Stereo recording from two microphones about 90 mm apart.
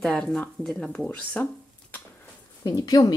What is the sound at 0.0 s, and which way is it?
Speech, 5° left (ahead or behind).